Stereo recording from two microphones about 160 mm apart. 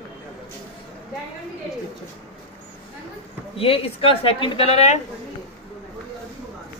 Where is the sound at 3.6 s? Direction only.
35° left (ahead or behind).